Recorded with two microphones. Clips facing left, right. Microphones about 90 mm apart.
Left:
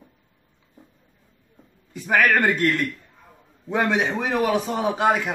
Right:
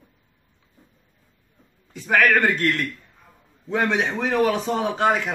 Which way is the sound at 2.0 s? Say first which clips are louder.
Even; 10° left (ahead or behind).